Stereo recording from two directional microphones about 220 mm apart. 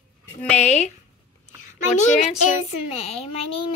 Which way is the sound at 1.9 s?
35° left (ahead or behind).